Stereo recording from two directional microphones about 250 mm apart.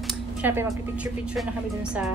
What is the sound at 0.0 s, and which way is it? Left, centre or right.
Speech, centre.